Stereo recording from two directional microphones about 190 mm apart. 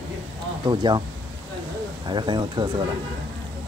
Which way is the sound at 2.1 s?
25° right (ahead or behind).